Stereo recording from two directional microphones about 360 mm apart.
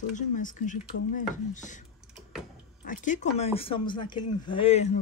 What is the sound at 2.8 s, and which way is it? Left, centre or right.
Speech, left.